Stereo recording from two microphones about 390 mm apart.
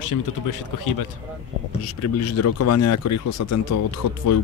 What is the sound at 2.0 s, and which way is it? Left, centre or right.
Speech, left.